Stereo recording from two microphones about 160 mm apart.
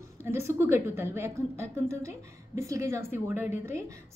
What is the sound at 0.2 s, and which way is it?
A woman's voice, 15° right (ahead or behind).